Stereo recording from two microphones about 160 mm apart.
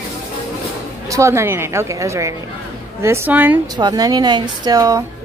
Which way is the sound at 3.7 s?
25° right (ahead or behind).